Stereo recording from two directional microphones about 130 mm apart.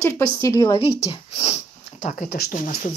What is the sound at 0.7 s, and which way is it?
Speech, 45° left (ahead or behind).